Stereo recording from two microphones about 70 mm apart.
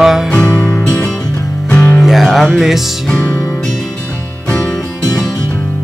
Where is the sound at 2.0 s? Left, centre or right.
Centre.